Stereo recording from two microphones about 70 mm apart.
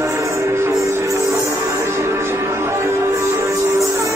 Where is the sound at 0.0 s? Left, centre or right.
Right.